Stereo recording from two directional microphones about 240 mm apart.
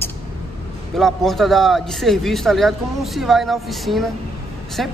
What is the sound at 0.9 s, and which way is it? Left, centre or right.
A man's voice, centre.